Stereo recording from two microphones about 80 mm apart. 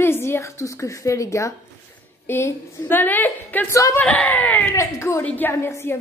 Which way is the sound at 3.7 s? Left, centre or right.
Left.